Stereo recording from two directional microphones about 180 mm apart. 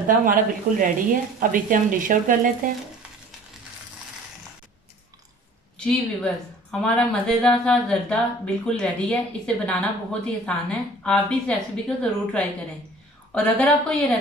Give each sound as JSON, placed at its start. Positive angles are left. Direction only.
{"t": 0.0, "sound": "speech", "side_deg": -50}
{"t": 5.9, "sound": "speech", "side_deg": 5}